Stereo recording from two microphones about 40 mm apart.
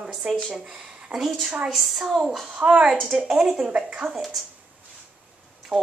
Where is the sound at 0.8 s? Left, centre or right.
Centre.